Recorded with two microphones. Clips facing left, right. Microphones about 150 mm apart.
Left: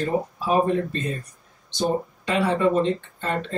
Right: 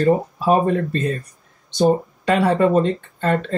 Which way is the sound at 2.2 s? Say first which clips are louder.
Right 5 dB; 55° right (ahead or behind).